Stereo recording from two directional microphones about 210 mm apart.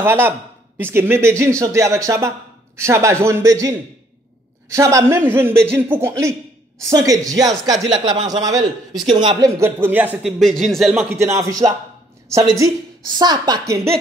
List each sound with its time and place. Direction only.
0.0 s a woman's voice: 10° right (ahead or behind)
9.5 s speech: 10° right (ahead or behind)
11.3 s a woman's voice: 15° right (ahead or behind)